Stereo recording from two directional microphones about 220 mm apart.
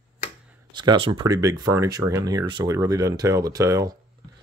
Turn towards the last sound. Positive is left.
turn(degrees=-15)  # may be behind; listen again after turning